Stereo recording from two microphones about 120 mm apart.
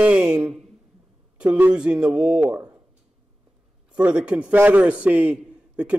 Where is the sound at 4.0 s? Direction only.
10° right (ahead or behind).